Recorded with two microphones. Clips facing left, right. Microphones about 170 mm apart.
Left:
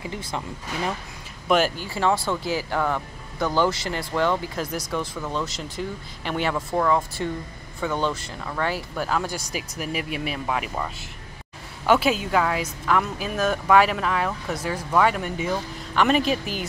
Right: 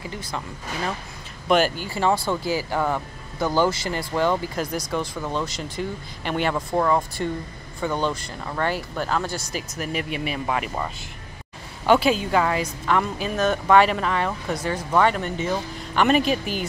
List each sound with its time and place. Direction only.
0.0 s speech: 20° left (ahead or behind)
1.5 s a woman's voice: centre (ahead or behind)
6.7 s speech: 15° right (ahead or behind)
7.8 s a woman's voice: centre (ahead or behind)
11.8 s a woman's voice: centre (ahead or behind)
15.5 s a woman's voice: centre (ahead or behind)